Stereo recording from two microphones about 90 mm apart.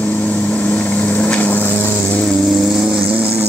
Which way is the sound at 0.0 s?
15° left (ahead or behind).